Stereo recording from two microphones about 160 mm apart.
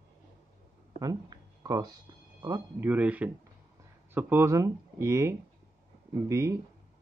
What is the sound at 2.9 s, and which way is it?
Speech, 10° right (ahead or behind).